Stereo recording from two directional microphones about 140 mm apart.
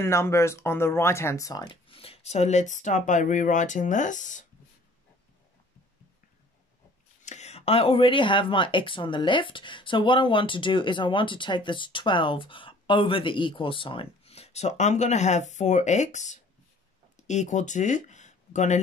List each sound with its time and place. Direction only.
0.0 s speech: 20° left (ahead or behind)
1.6 s speech: 40° left (ahead or behind); by 4.5 s 65° left (ahead or behind)
7.2 s speech: 55° left (ahead or behind)